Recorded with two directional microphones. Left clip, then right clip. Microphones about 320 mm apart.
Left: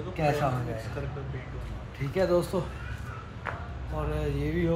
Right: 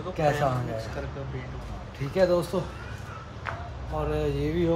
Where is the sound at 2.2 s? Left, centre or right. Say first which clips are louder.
Right 3 dB; centre.